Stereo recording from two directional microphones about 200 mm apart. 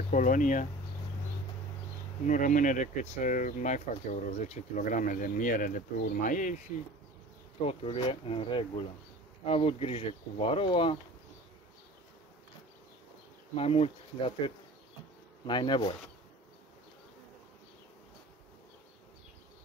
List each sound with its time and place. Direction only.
0.1 s speech: 40° left (ahead or behind)
2.2 s speech: 40° left (ahead or behind)
7.6 s speech: 30° left (ahead or behind)
13.6 s speech: 30° left (ahead or behind)